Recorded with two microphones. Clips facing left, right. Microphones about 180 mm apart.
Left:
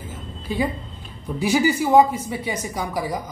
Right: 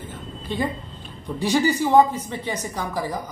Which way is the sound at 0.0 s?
5° left (ahead or behind).